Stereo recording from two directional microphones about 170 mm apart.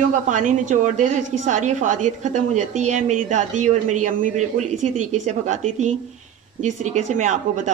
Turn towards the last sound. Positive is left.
turn(degrees=-45)  # may be behind; listen again after turning